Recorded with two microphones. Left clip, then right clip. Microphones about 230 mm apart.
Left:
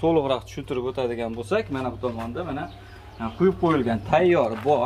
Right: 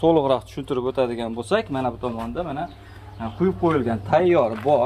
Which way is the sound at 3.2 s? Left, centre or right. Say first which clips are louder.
Even; centre.